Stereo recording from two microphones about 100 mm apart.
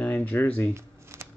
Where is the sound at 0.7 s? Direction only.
25° right (ahead or behind).